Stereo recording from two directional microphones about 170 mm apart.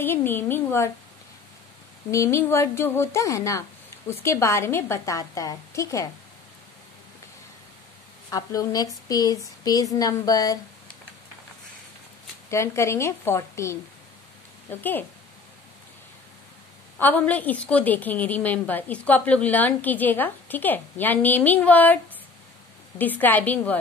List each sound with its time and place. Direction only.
0.0 s a woman's voice: 10° left (ahead or behind)
2.0 s a woman's voice: 15° left (ahead or behind)
8.3 s speech: 20° left (ahead or behind)
12.4 s a woman's voice: 15° left (ahead or behind)
17.0 s a woman's voice: 10° left (ahead or behind)